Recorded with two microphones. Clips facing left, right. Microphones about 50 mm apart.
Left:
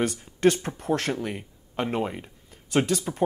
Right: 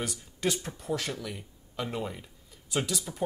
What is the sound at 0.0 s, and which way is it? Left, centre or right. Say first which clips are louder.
Speech: left 10 dB; left.